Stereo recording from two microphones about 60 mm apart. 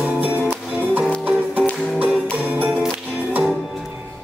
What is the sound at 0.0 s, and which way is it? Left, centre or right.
Music, right.